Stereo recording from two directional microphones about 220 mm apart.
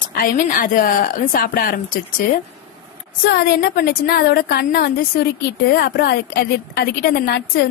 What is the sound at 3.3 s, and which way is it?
A woman's voice, 45° left (ahead or behind).